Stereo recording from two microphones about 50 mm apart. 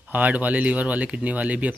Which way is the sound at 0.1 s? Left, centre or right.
Right.